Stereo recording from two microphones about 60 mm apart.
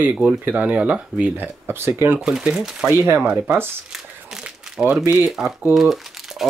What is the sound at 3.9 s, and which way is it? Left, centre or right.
Crumpling, centre.